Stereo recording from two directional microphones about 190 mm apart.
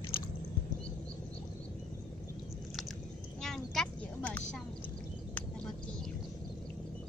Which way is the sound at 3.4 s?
5° left (ahead or behind).